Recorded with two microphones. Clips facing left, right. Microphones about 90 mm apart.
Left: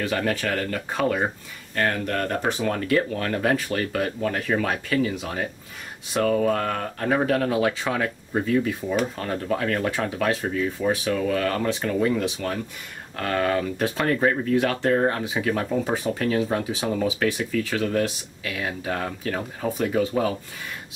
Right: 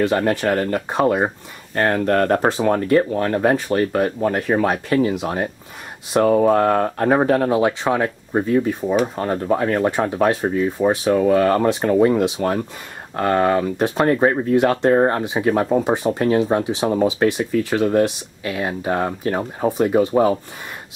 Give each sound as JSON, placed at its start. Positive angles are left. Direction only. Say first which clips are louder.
{"t": 0.1, "sound": "speech", "louder": "right 6 dB", "side_deg": -25}